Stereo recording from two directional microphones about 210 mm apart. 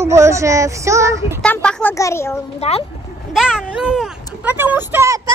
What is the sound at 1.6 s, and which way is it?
Speech, 5° left (ahead or behind).